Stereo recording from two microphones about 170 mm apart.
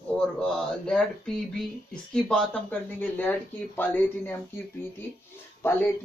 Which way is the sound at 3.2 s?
10° left (ahead or behind).